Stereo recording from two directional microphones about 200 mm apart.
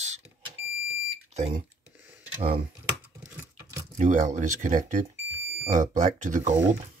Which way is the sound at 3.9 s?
40° right (ahead or behind).